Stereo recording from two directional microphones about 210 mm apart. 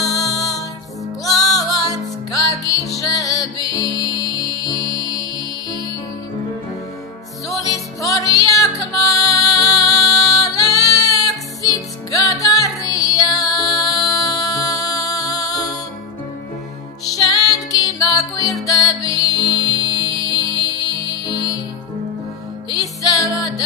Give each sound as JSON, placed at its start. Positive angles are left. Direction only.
{"t": 0.2, "sound": "music", "side_deg": 15}
{"t": 7.5, "sound": "music", "side_deg": 15}
{"t": 17.3, "sound": "music", "side_deg": 15}
{"t": 22.7, "sound": "music", "side_deg": 15}